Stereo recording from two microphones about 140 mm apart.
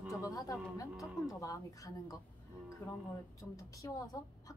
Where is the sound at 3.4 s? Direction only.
25° left (ahead or behind).